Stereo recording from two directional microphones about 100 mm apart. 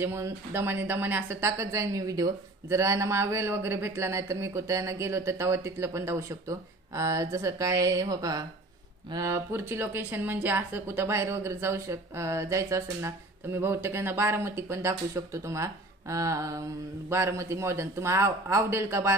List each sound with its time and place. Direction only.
0.0 s speech: 25° right (ahead or behind)
9.1 s speech: 30° right (ahead or behind)